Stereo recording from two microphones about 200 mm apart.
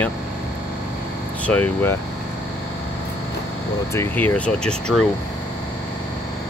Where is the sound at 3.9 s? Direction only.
10° left (ahead or behind).